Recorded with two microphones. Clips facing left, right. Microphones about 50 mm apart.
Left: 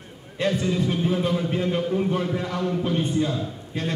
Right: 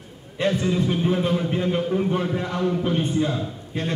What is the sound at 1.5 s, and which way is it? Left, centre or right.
Speech, centre.